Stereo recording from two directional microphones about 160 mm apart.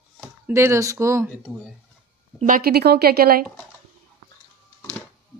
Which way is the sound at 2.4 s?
65° right (ahead or behind).